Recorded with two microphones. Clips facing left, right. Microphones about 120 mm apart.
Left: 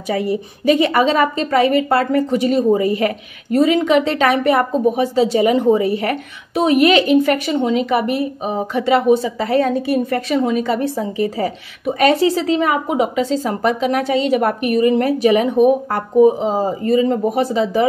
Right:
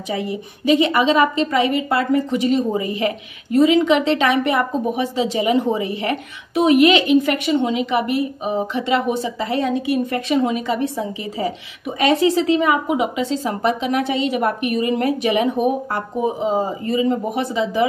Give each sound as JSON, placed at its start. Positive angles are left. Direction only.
{"t": 0.1, "sound": "a woman's voice", "side_deg": 45}